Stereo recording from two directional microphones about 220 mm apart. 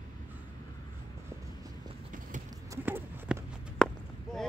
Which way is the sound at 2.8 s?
10° right (ahead or behind).